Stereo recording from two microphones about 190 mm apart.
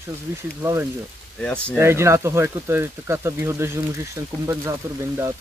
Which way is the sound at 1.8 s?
15° right (ahead or behind).